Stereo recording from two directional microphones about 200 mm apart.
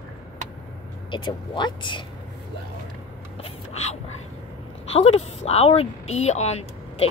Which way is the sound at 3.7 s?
35° left (ahead or behind).